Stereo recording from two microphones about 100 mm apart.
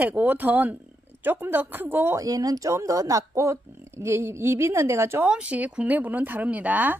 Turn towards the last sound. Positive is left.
turn(degrees=-15)  # may be behind; listen again after turning